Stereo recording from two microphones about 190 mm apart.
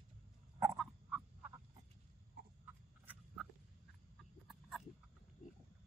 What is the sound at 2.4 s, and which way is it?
Frog, 55° right (ahead or behind).